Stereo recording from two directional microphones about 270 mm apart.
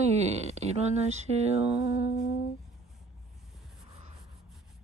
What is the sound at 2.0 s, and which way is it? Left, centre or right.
Humming, left.